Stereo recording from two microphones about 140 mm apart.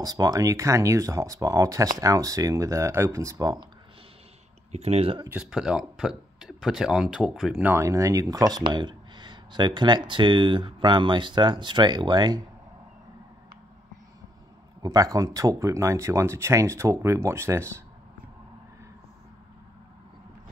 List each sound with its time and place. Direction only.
0.0 s speech: 25° right (ahead or behind)
4.7 s speech: 50° right (ahead or behind)
5.3 s speech: 5° right (ahead or behind)
7.7 s speech: 20° right (ahead or behind)
14.8 s speech: 25° right (ahead or behind)